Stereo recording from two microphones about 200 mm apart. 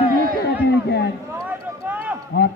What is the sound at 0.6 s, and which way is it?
Speech, 55° left (ahead or behind).